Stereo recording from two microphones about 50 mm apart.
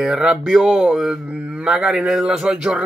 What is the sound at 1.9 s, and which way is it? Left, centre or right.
Speech, centre.